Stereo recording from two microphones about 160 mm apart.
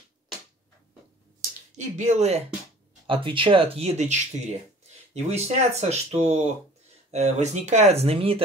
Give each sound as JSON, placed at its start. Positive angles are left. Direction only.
{"t": 1.8, "sound": "speech", "side_deg": -45}
{"t": 3.1, "sound": "speech", "side_deg": -35}